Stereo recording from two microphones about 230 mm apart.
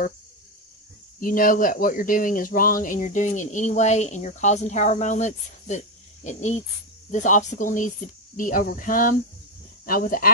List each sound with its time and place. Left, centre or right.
1.2 s speech: left